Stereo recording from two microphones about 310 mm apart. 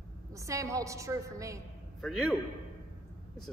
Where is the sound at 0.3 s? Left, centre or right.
Centre.